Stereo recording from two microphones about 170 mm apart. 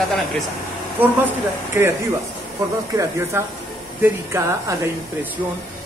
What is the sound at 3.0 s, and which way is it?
Speech, 15° right (ahead or behind).